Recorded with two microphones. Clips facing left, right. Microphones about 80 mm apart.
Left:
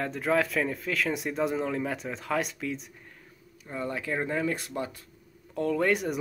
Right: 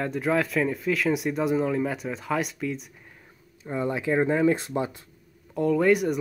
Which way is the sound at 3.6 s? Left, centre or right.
Right.